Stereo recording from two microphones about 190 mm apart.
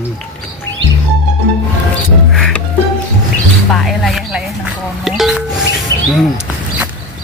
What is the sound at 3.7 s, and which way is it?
Speech, centre (ahead or behind).